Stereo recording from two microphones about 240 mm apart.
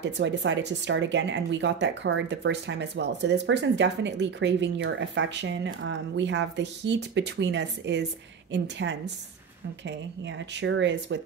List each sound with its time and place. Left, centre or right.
0.0 s speech: right